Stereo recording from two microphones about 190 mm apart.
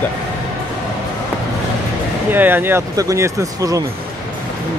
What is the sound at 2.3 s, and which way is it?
Speech, 10° right (ahead or behind).